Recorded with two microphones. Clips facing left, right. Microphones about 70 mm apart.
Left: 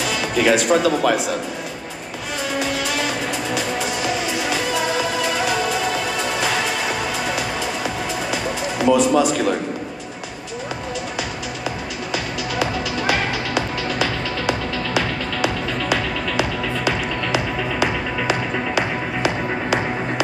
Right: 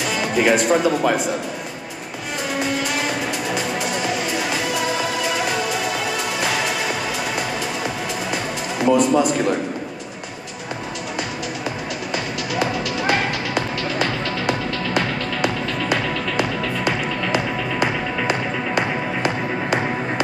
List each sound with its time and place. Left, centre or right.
0.0 s speech: centre
2.5 s music: centre
8.3 s music: centre
12.1 s music: centre
17.3 s music: right
18.3 s music: centre